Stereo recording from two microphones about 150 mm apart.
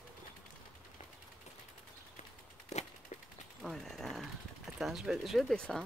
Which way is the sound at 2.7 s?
45° left (ahead or behind).